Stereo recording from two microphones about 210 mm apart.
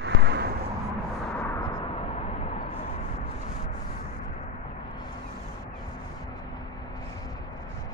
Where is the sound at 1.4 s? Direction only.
15° left (ahead or behind).